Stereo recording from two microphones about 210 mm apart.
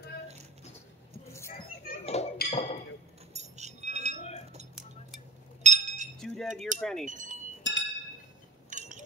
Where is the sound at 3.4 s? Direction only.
35° right (ahead or behind).